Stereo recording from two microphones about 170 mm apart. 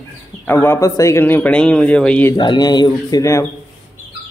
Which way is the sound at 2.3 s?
25° left (ahead or behind).